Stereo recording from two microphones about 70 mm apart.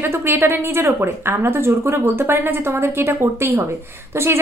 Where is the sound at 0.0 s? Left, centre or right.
Right.